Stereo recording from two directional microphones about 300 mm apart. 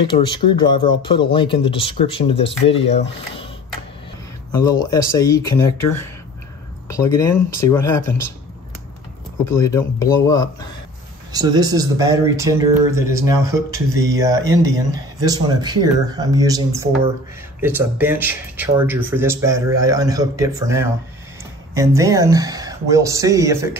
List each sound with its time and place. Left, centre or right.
0.3 s speech: centre
4.6 s speech: centre
9.5 s speech: centre
11.3 s speech: centre